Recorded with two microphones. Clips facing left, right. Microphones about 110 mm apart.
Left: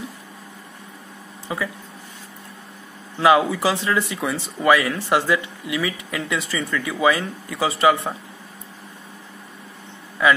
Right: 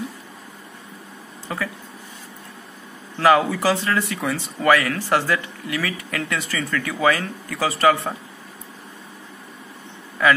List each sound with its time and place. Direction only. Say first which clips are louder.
1.5 s speech: left 1 dB; 10° left (ahead or behind)
3.2 s speech: even; 15° left (ahead or behind)